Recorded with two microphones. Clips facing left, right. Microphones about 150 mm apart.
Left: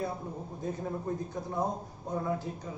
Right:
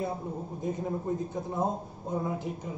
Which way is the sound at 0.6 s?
20° right (ahead or behind).